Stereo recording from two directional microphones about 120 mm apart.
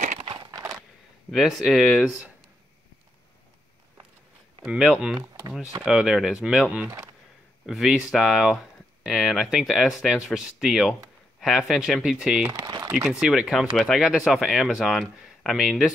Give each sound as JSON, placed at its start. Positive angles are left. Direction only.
{"t": 0.2, "sound": "a sound", "side_deg": -35}
{"t": 1.3, "sound": "speech", "side_deg": 0}
{"t": 4.6, "sound": "speech", "side_deg": -5}
{"t": 5.2, "sound": "a sound", "side_deg": -30}
{"t": 5.9, "sound": "speech", "side_deg": -5}
{"t": 12.4, "sound": "speech", "side_deg": -30}
{"t": 12.9, "sound": "speech", "side_deg": -5}